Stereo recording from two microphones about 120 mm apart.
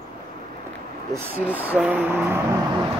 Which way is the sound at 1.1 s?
15° right (ahead or behind).